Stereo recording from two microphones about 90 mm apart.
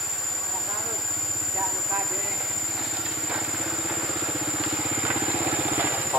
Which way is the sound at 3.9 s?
15° right (ahead or behind).